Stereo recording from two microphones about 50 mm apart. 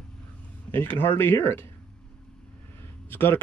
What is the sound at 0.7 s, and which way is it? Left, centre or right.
Speech, left.